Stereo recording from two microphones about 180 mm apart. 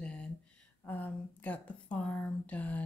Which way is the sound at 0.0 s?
5° left (ahead or behind).